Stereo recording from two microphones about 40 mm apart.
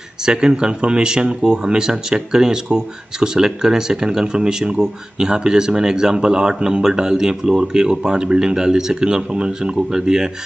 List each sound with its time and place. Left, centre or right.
0.2 s speech: centre